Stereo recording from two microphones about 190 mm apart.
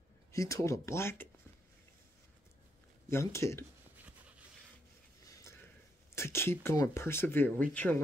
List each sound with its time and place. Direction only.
0.3 s speech: 15° left (ahead or behind)
3.1 s speech: 15° left (ahead or behind)
5.2 s a sound: 15° left (ahead or behind)
6.1 s speech: 15° left (ahead or behind)